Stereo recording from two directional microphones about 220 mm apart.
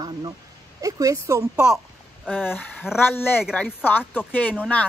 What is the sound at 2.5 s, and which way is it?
Speech, 10° left (ahead or behind).